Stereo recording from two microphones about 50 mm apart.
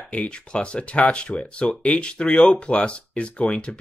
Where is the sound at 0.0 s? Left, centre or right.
Left.